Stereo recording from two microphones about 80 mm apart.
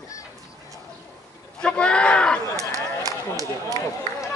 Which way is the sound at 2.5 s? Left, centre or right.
Right.